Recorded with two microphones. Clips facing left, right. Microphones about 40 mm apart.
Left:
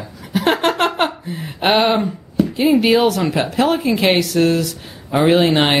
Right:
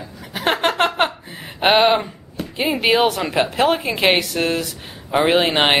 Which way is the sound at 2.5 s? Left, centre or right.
Right.